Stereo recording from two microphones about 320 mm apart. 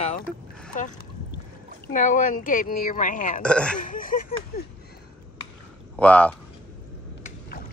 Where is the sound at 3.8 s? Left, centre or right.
Left.